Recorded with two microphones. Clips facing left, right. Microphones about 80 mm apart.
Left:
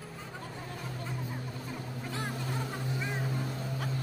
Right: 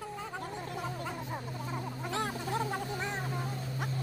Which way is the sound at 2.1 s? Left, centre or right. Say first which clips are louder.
Right 4 dB; right.